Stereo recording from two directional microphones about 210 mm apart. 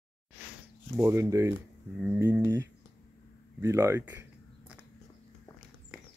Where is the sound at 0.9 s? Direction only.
15° right (ahead or behind).